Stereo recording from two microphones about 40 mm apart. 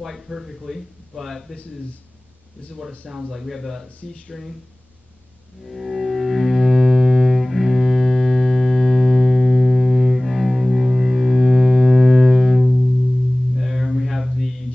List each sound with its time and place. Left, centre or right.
0.3 s speech: centre
0.7 s a man's voice: centre
3.3 s a man's voice: centre
5.7 s music: centre
13.6 s a sound: centre